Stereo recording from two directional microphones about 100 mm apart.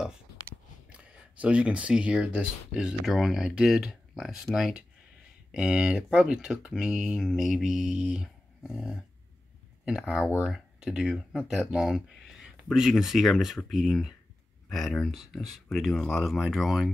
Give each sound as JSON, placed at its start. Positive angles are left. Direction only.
{"t": 0.8, "sound": "speech", "side_deg": -10}